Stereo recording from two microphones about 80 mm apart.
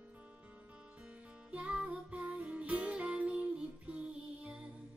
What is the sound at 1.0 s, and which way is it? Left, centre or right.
Music, centre.